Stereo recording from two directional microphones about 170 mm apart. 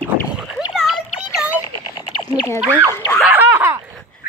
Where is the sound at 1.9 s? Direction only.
25° left (ahead or behind).